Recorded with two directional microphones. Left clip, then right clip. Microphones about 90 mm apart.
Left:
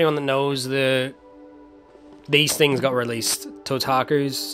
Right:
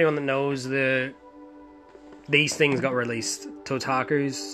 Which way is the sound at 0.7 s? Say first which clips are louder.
Left 3 dB; 35° left (ahead or behind).